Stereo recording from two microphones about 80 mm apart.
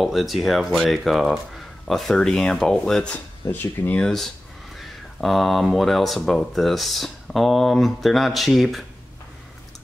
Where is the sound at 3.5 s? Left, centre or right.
Left.